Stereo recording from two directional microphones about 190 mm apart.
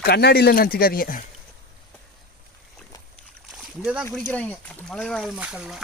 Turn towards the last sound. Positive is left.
turn(degrees=-5)  # may be behind; listen again after turning